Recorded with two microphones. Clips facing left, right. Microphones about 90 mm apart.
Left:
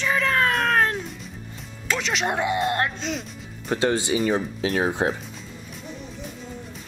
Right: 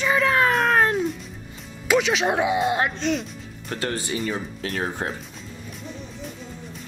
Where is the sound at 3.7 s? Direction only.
20° left (ahead or behind).